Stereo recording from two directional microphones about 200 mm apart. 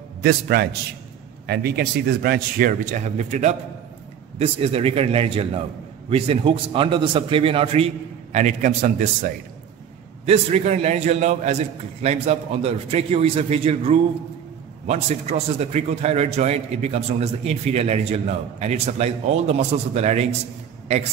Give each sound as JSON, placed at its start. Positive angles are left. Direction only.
{"t": 0.2, "sound": "a man's voice", "side_deg": -50}